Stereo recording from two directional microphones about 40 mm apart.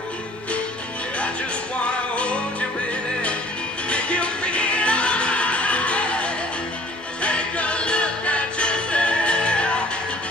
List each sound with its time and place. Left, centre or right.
2.1 s music: left
3.9 s music: left